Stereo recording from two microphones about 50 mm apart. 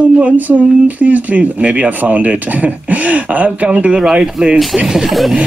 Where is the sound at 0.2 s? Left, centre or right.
Right.